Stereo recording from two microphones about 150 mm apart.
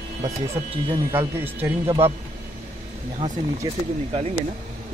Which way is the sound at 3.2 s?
30° right (ahead or behind).